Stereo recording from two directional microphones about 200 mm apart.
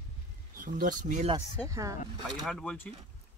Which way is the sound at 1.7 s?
15° right (ahead or behind).